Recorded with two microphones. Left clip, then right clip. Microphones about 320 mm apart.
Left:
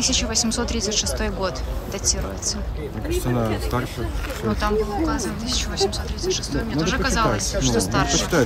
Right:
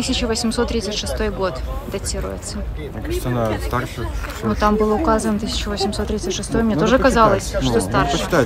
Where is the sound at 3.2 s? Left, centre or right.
Centre.